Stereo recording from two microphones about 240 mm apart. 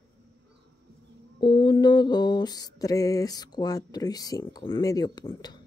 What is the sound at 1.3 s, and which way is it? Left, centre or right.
Mantra, centre.